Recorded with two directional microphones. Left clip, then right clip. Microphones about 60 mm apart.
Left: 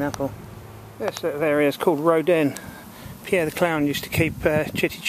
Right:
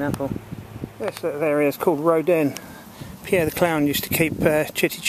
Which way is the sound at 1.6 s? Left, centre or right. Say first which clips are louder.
Even; right.